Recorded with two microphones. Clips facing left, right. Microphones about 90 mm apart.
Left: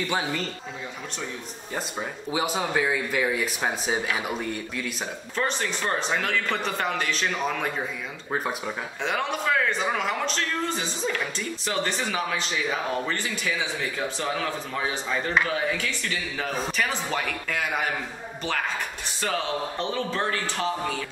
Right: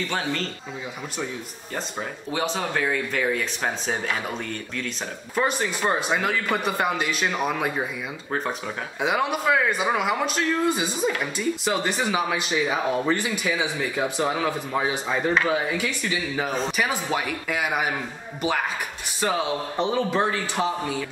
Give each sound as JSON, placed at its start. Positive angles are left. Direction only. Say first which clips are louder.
{"t": 0.1, "sound": "speech", "louder": "even", "side_deg": 10}
{"t": 2.3, "sound": "speech", "louder": "even", "side_deg": 10}
{"t": 5.3, "sound": "speech", "louder": "right 4 dB", "side_deg": -10}
{"t": 9.0, "sound": "speech", "louder": "right 4 dB", "side_deg": -10}
{"t": 19.2, "sound": "speech", "louder": "right 3 dB", "side_deg": -15}